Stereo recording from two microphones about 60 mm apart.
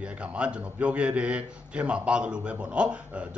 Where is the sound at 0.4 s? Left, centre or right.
Centre.